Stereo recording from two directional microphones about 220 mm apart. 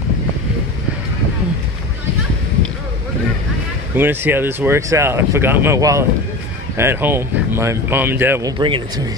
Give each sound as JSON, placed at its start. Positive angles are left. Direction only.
{"t": 3.9, "sound": "speech", "side_deg": -10}